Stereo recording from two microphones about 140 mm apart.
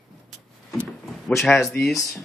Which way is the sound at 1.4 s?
Centre (ahead or behind).